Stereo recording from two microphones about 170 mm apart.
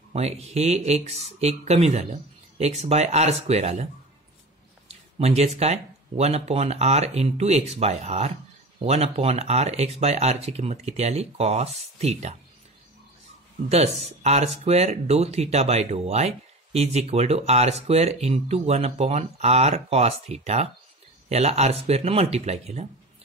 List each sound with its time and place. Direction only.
0.1 s speech: 40° right (ahead or behind)
4.8 s a sound: 40° right (ahead or behind)
5.6 s speech: 40° right (ahead or behind)
14.2 s speech: 40° right (ahead or behind)